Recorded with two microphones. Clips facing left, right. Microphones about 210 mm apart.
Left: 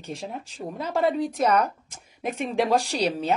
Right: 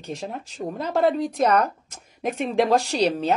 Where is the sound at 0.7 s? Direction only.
5° left (ahead or behind).